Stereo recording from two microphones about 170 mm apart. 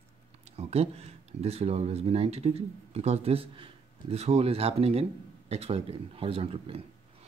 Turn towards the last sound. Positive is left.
turn(degrees=-35)  # may be behind; listen again after turning